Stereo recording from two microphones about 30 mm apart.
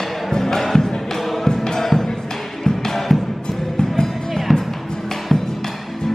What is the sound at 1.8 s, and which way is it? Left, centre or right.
Music, centre.